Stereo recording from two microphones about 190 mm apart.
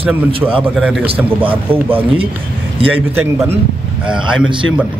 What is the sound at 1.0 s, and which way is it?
Speech, 30° right (ahead or behind).